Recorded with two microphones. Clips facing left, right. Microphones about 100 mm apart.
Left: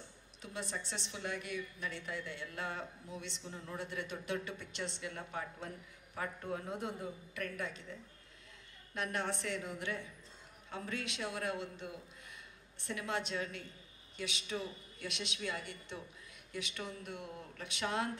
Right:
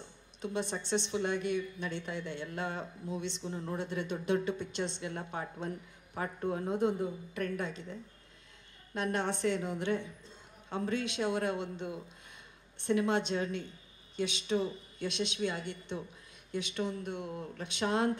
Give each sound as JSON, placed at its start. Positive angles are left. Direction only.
{"t": 0.4, "sound": "speech", "side_deg": -25}